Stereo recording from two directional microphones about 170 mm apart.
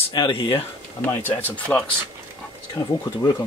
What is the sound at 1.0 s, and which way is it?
Speech, 10° left (ahead or behind).